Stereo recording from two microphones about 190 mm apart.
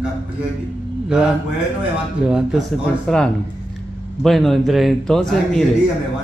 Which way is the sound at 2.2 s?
Centre (ahead or behind).